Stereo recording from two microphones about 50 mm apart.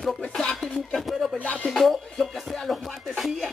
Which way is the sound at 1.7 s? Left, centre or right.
Centre.